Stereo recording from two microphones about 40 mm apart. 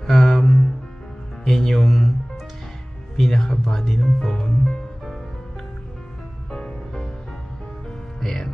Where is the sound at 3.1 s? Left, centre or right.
Centre.